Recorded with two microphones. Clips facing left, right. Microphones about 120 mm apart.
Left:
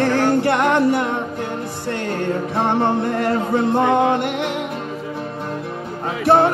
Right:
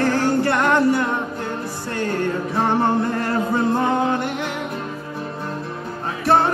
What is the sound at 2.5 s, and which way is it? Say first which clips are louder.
Music: even; 20° left (ahead or behind).